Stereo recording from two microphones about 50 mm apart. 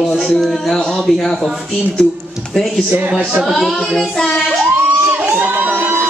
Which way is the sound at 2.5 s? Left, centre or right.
Centre.